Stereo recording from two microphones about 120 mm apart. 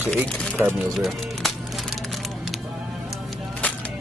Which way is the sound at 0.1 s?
5° left (ahead or behind).